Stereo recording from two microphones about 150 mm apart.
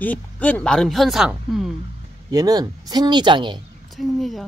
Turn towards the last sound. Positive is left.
turn(degrees=0)  # may be behind; listen again after turning